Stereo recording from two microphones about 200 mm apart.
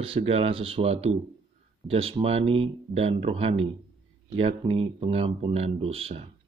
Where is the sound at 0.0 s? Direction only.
30° right (ahead or behind).